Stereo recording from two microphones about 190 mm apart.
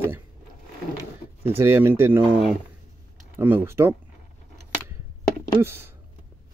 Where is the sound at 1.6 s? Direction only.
10° right (ahead or behind).